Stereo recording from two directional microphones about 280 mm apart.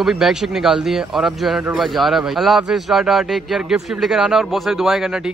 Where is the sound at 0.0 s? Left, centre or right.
Centre.